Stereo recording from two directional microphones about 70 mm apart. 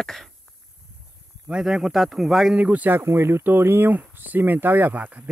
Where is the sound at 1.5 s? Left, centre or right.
Centre.